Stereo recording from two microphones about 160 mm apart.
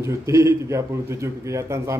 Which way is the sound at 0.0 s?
20° right (ahead or behind).